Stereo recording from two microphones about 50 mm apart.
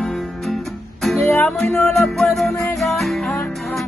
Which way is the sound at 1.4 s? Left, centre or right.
Left.